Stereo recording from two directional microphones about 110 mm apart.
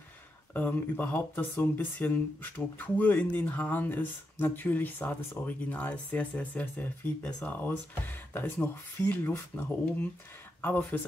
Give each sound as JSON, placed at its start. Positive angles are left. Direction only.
{"t": 0.5, "sound": "speech", "side_deg": 15}